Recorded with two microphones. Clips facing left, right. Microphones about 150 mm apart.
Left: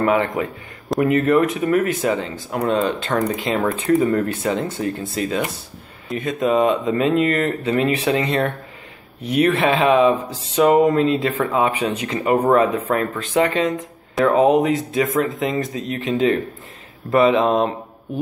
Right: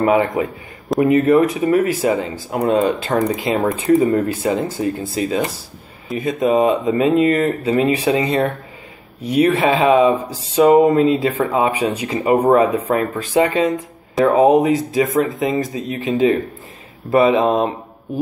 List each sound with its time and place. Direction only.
0.0 s speech: 10° right (ahead or behind)
4.5 s speech: 5° right (ahead or behind)